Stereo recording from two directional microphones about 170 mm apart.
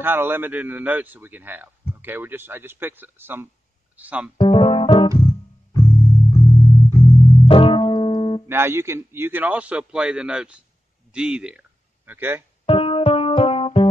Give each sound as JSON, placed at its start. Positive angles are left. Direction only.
{"t": 0.0, "sound": "a man's voice", "side_deg": -15}
{"t": 4.4, "sound": "music", "side_deg": 35}
{"t": 5.2, "sound": "keyboard", "side_deg": 35}
{"t": 6.3, "sound": "music", "side_deg": 35}
{"t": 8.5, "sound": "a man's voice", "side_deg": -15}
{"t": 12.6, "sound": "music", "side_deg": 35}